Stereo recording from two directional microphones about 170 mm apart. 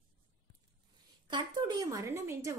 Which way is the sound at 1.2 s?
25° right (ahead or behind).